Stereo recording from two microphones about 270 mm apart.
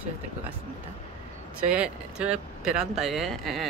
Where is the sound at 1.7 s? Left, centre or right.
Centre.